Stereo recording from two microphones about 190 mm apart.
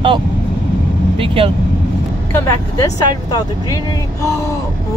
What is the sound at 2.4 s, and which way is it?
Speech, 20° left (ahead or behind).